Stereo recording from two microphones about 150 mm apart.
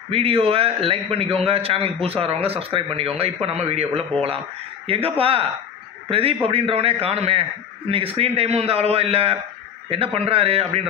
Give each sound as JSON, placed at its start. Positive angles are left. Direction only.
{"t": 0.1, "sound": "a man's voice", "side_deg": -40}
{"t": 4.8, "sound": "a man's voice", "side_deg": -40}